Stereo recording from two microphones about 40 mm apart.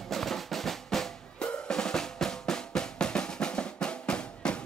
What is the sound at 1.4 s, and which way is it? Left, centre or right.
Drum, left.